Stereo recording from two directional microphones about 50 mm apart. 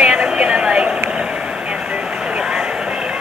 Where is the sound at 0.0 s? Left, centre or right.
Centre.